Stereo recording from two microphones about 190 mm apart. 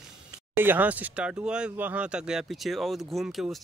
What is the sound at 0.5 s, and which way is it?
Speech, 10° right (ahead or behind).